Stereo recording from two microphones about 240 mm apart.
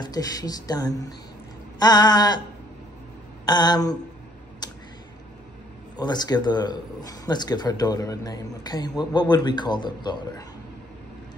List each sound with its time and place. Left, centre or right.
0.0 s a man's voice: centre
3.4 s a man's voice: centre
5.9 s a man's voice: centre